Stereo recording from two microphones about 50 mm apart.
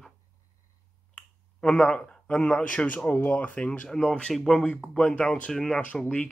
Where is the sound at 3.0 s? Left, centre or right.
Left.